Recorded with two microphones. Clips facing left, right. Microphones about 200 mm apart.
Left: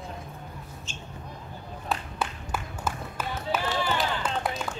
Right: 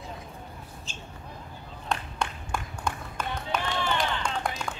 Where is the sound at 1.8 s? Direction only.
5° left (ahead or behind).